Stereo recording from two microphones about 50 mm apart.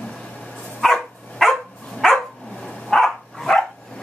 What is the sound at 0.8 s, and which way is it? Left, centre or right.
Dog, centre.